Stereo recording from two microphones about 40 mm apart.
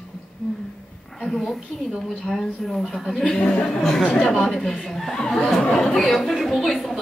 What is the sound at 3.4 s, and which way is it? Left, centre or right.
Speech, left.